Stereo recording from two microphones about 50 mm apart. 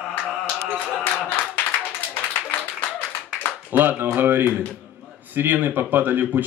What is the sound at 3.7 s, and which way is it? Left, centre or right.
A man's voice, right.